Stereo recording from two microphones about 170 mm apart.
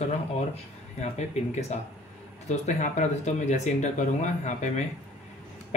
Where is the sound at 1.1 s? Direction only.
40° left (ahead or behind).